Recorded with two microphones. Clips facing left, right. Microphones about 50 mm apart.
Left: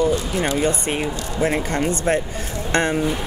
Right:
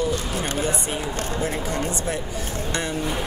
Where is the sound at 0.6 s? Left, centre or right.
Left.